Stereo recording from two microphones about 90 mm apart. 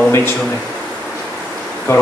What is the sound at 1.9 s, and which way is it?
Speech, 25° left (ahead or behind).